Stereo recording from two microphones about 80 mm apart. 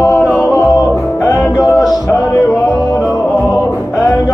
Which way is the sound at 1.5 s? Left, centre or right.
Left.